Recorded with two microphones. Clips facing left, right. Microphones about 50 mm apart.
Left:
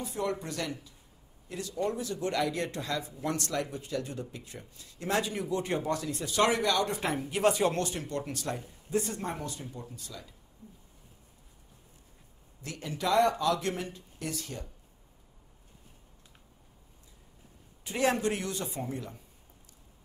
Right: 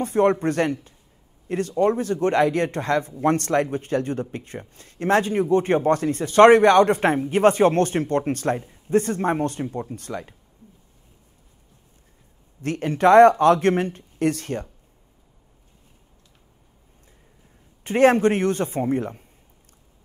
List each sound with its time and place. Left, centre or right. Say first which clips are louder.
0.0 s speech: right 14 dB; right
12.6 s speech: right 14 dB; right
17.8 s speech: right 12 dB; right